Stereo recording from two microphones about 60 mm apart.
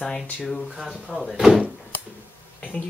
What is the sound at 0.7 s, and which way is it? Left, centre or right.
Speech, centre.